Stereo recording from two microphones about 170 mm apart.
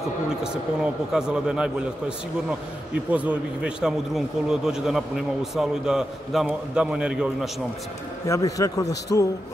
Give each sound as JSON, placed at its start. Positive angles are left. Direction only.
{"t": 1.1, "sound": "a man's voice", "side_deg": -5}
{"t": 8.3, "sound": "a man's voice", "side_deg": 20}